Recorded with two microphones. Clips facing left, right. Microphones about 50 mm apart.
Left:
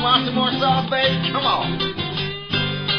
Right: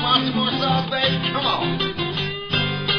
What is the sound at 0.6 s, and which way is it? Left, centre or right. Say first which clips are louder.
Music: left 4 dB; left.